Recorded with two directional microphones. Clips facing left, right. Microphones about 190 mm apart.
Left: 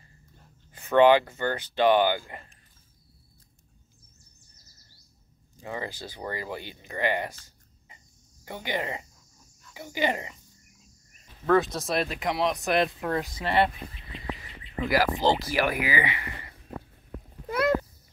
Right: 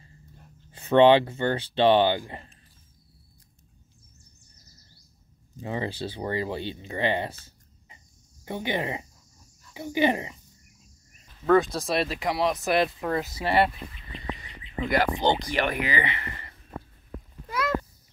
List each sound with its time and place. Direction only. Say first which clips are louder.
0.7 s speech: right 2 dB; 25° right (ahead or behind)
5.6 s speech: right 5 dB; 20° right (ahead or behind)
8.5 s speech: right 3 dB; 20° right (ahead or behind)
11.4 s speech: right 2 dB; centre (ahead or behind)
14.9 s speech: even; centre (ahead or behind)
17.5 s a sound: left 5 dB; 55° left (ahead or behind)